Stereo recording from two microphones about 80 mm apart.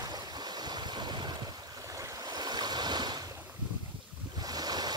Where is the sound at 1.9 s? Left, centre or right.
Right.